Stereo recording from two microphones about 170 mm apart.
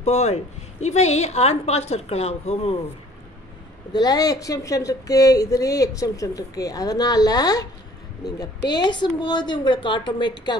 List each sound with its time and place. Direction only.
0.0 s a woman's voice: 40° left (ahead or behind)
3.9 s speech: 20° left (ahead or behind)
8.7 s speech: 25° left (ahead or behind)